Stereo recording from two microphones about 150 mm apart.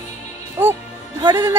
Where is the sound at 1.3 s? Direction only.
15° right (ahead or behind).